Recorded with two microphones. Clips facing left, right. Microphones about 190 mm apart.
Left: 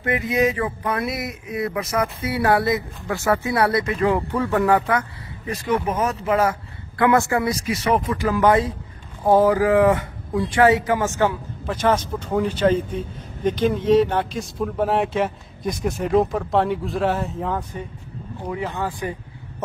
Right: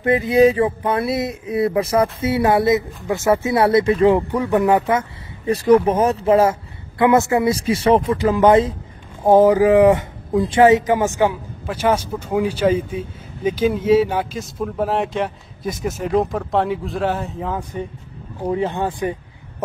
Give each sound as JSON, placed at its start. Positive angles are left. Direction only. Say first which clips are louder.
{"t": 0.0, "sound": "speech", "louder": "right 7 dB", "side_deg": -30}
{"t": 5.5, "sound": "speech", "louder": "right 9 dB", "side_deg": -35}
{"t": 18.5, "sound": "speech", "louder": "right 6 dB", "side_deg": -25}